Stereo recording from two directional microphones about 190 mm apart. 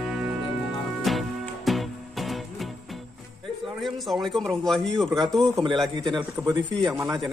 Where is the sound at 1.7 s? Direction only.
Centre (ahead or behind).